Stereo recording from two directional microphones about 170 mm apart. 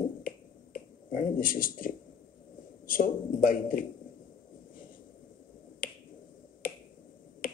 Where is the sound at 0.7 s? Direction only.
55° left (ahead or behind).